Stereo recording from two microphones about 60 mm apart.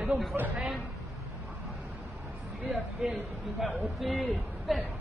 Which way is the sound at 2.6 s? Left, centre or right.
Centre.